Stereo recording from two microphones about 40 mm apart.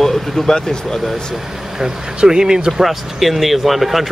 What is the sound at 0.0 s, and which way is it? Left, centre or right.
Speech, centre.